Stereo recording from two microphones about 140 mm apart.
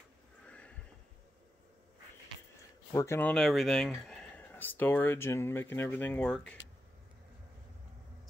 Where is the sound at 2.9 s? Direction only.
15° left (ahead or behind).